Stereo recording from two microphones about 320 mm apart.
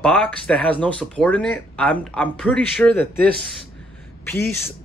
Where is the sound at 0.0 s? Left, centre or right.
Centre.